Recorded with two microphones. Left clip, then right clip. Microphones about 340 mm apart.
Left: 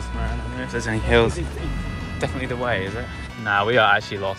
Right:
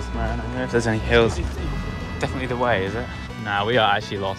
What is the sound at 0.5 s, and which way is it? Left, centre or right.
Speech, centre.